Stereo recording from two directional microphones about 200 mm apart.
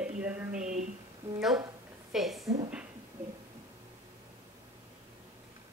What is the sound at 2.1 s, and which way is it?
Speech, centre (ahead or behind).